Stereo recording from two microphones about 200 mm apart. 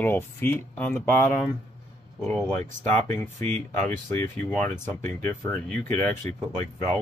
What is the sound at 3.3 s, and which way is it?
Speech, 40° right (ahead or behind).